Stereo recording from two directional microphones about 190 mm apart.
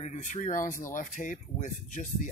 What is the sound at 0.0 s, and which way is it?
Speech, 40° left (ahead or behind).